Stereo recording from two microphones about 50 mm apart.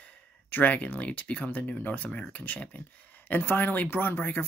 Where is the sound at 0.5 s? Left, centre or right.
Left.